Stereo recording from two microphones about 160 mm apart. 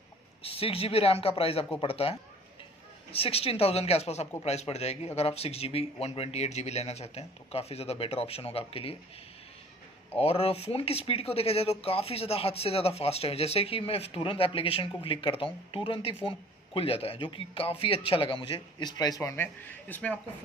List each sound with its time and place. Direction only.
0.4 s speech: 35° left (ahead or behind)
10.1 s speech: 40° left (ahead or behind); by 20.2 s 10° left (ahead or behind)